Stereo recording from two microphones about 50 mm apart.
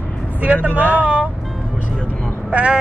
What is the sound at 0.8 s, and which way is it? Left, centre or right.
Speech, right.